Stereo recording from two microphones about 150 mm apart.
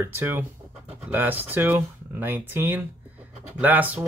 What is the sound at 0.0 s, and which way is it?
Speech, 15° right (ahead or behind).